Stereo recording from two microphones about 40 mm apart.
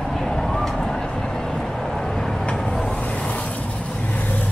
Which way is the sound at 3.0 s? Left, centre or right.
Left.